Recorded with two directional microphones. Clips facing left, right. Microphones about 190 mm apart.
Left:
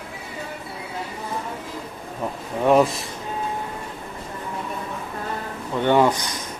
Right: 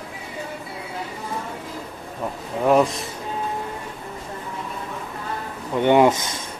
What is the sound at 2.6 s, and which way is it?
Speech, centre (ahead or behind).